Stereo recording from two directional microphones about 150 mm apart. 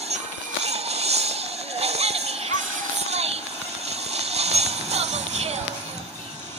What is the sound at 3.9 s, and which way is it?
Music, 45° right (ahead or behind).